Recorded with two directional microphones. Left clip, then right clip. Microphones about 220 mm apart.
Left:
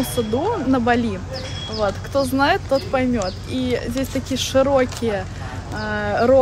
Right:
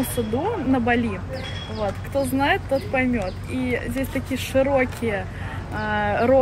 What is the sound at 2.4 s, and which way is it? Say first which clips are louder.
Speech: left 3 dB; 15° left (ahead or behind).